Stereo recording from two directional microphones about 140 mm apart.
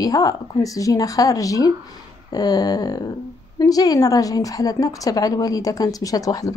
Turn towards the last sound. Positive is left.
turn(degrees=25)  # may be behind; listen again after turning